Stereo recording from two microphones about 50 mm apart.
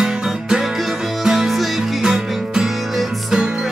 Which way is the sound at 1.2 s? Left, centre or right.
Centre.